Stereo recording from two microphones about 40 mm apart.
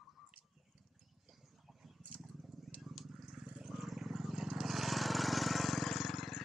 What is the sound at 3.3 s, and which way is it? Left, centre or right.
Vehicle, centre.